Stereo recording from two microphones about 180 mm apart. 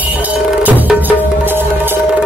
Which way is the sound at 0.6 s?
10° right (ahead or behind).